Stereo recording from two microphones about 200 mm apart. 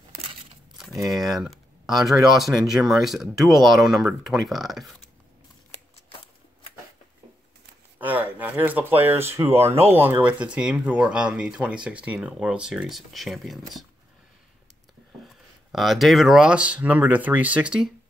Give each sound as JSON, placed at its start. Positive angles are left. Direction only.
{"t": 0.7, "sound": "speech", "side_deg": 0}
{"t": 8.0, "sound": "speech", "side_deg": -10}
{"t": 15.2, "sound": "speech", "side_deg": 0}